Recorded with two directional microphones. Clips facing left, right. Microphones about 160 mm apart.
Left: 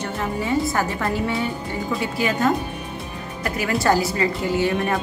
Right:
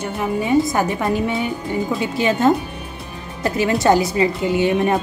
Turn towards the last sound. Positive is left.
turn(degrees=-20)  # may be behind; listen again after turning